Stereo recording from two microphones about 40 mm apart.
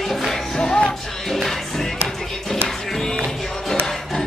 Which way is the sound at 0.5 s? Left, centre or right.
Centre.